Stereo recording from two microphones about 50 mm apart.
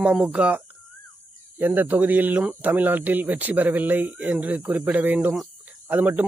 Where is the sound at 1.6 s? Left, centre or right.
Right.